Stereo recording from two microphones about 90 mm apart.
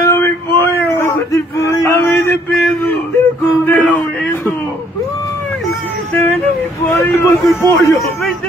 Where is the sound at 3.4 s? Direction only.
20° left (ahead or behind).